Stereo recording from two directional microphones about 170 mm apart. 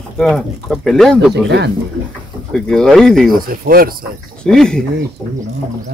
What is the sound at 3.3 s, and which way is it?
Speech, 60° right (ahead or behind).